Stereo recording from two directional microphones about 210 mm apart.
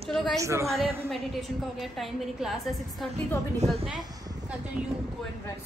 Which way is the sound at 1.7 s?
Centre (ahead or behind).